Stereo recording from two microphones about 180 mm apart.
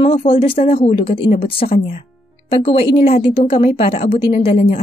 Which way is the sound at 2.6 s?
30° left (ahead or behind).